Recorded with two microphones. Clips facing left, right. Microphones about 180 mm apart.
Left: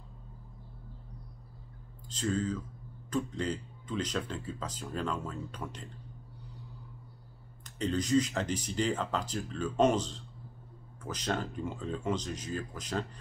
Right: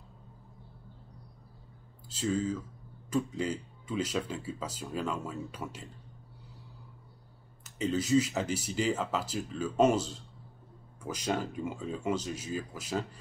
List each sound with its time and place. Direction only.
2.0 s speech: 5° right (ahead or behind)
7.6 s speech: 5° right (ahead or behind)